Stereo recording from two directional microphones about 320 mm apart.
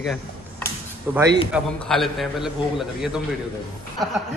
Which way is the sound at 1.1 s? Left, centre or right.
Centre.